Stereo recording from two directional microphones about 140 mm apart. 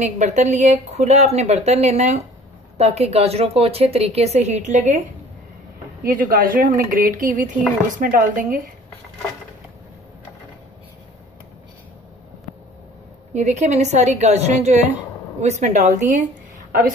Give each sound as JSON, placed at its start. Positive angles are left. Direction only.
{"t": 0.0, "sound": "speech", "side_deg": -55}
{"t": 6.0, "sound": "speech", "side_deg": -85}
{"t": 13.3, "sound": "speech", "side_deg": -55}